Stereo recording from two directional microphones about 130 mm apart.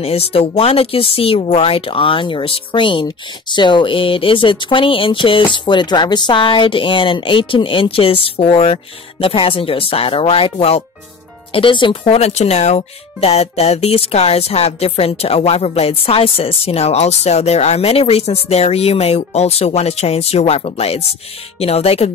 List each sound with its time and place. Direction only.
0.0 s speech: 50° left (ahead or behind)